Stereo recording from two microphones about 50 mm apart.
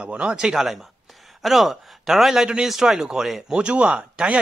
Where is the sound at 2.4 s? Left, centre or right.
Centre.